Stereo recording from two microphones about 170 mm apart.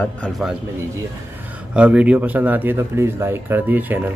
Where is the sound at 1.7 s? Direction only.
5° right (ahead or behind).